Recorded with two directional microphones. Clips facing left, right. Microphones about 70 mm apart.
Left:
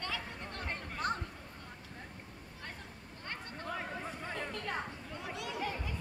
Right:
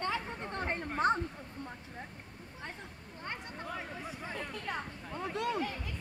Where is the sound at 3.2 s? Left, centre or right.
Centre.